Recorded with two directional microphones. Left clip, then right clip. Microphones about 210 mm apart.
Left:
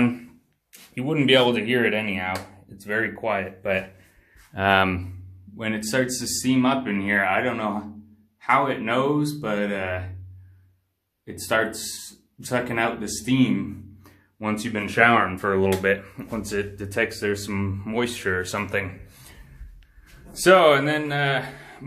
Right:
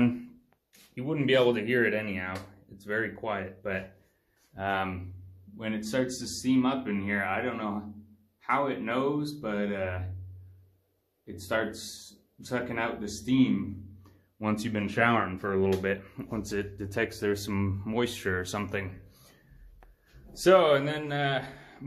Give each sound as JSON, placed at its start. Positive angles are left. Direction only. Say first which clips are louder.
{"t": 0.9, "sound": "speech", "louder": "left 7 dB", "side_deg": 5}
{"t": 4.6, "sound": "speech", "louder": "left 11 dB", "side_deg": 40}
{"t": 5.6, "sound": "speech", "louder": "left 7 dB", "side_deg": 10}
{"t": 11.2, "sound": "speech", "louder": "left 7 dB", "side_deg": 5}
{"t": 14.4, "sound": "speech", "louder": "left 5 dB", "side_deg": -20}
{"t": 15.2, "sound": "speech", "louder": "left 6 dB", "side_deg": 0}
{"t": 20.3, "sound": "speech", "louder": "left 6 dB", "side_deg": 0}